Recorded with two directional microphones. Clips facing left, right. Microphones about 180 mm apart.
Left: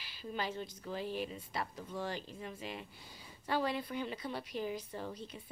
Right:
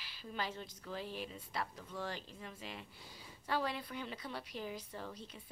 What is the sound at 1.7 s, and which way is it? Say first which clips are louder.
Speech: left 3 dB; 15° left (ahead or behind).